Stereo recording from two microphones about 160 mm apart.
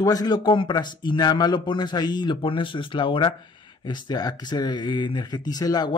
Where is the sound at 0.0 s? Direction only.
25° left (ahead or behind).